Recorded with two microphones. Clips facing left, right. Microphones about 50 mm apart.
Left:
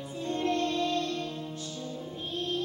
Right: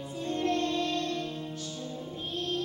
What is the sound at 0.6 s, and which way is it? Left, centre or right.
Music, centre.